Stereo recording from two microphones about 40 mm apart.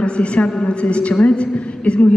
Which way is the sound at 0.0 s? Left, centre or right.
Left.